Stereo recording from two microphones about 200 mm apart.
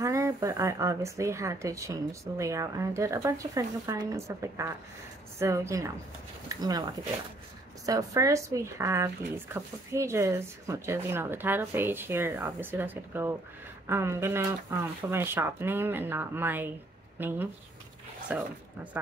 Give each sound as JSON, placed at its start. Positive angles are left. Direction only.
{"t": 0.0, "sound": "speech", "side_deg": -15}
{"t": 7.8, "sound": "speech", "side_deg": -15}